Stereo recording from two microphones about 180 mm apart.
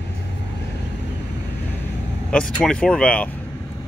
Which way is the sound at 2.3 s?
5° left (ahead or behind).